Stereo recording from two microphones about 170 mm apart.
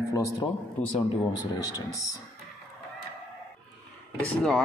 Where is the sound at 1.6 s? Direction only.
20° left (ahead or behind).